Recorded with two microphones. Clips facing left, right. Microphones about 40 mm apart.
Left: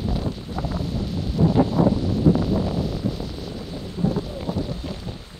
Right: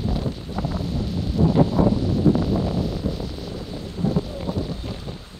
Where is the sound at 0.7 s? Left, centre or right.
Centre.